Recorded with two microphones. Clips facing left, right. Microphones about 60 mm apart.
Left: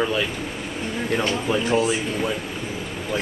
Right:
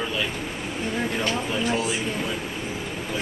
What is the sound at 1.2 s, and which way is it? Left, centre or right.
A man's voice, centre.